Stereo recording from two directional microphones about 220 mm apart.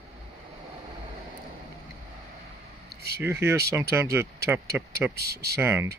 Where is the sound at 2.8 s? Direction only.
45° right (ahead or behind).